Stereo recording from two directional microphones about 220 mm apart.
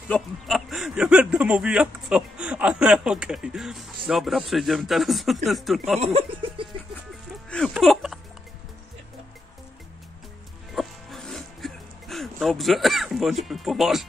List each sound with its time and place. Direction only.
0.1 s speech: centre (ahead or behind)
5.9 s speech: 25° right (ahead or behind)
7.4 s music: 5° left (ahead or behind)
10.7 s music: centre (ahead or behind)